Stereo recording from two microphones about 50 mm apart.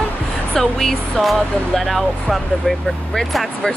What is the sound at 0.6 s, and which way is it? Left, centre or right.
Speech, centre.